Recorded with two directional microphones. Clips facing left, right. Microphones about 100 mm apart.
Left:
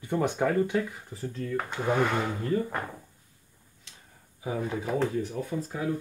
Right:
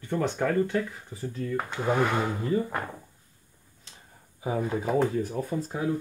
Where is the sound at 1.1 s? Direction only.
5° right (ahead or behind).